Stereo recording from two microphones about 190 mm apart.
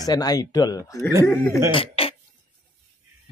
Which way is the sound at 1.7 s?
30° left (ahead or behind).